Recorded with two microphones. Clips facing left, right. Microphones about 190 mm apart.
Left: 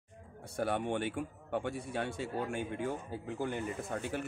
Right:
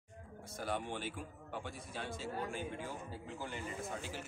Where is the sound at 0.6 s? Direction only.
60° left (ahead or behind).